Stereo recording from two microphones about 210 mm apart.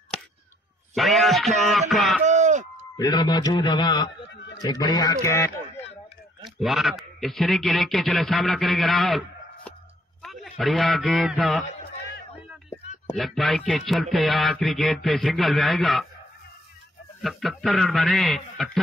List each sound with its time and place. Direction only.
0.9 s music: centre (ahead or behind)
2.2 s a sound: 35° right (ahead or behind)
3.0 s a man's voice: 20° left (ahead or behind)
6.4 s music: centre (ahead or behind)
10.2 s a man's voice: centre (ahead or behind)
13.1 s music: centre (ahead or behind)
17.2 s music: centre (ahead or behind)